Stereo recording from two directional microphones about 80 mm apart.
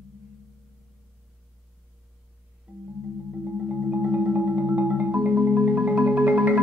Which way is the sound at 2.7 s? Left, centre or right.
Centre.